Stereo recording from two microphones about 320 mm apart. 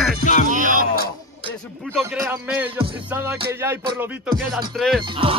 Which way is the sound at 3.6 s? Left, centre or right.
Centre.